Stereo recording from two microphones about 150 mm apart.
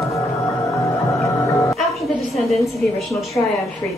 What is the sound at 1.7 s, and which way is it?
A woman's voice, centre (ahead or behind).